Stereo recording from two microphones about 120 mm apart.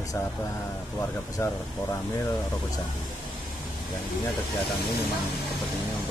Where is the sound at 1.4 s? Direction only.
25° left (ahead or behind).